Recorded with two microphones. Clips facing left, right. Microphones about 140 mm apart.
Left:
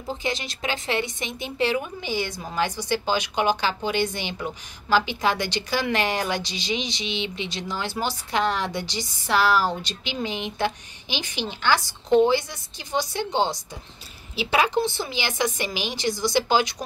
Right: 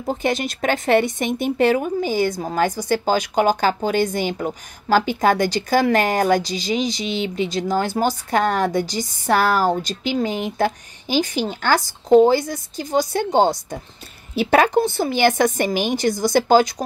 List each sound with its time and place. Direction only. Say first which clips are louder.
0.0 s speech: right 7 dB; 50° right (ahead or behind)